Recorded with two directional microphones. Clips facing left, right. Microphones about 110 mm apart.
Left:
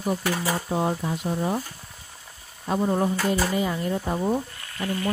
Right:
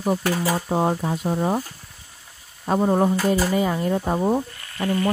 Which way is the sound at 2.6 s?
60° right (ahead or behind).